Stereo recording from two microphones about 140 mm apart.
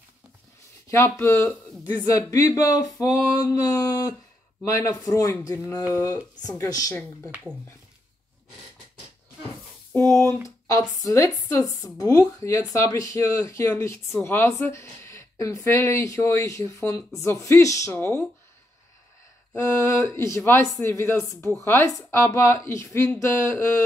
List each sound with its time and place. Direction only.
0.8 s speech: 20° left (ahead or behind)
7.2 s speech: 10° right (ahead or behind)
10.7 s speech: 25° left (ahead or behind)
19.5 s speech: 20° left (ahead or behind)